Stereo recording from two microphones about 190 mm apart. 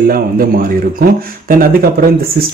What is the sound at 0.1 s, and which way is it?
Speech, 50° right (ahead or behind).